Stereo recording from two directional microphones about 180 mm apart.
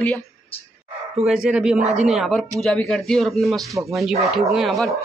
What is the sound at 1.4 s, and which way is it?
A man's voice, 5° right (ahead or behind).